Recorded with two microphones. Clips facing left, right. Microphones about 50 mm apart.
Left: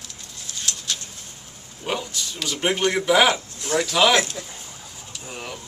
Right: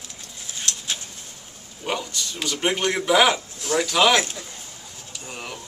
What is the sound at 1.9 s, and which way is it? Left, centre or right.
A man's voice, centre.